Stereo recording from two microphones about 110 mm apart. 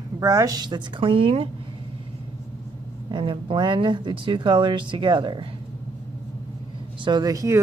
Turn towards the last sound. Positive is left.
turn(degrees=-30)  # may be behind; listen again after turning